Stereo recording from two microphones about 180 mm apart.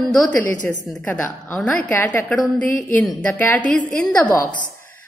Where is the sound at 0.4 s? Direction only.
45° right (ahead or behind).